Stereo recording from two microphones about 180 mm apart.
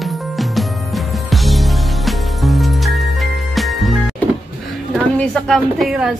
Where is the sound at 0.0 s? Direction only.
Centre (ahead or behind).